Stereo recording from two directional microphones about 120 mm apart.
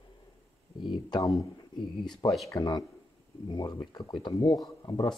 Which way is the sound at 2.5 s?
35° left (ahead or behind).